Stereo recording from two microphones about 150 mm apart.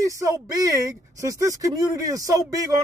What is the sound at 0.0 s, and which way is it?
Speech, 20° right (ahead or behind).